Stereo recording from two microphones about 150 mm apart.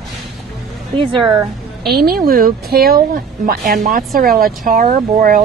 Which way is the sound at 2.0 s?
85° right.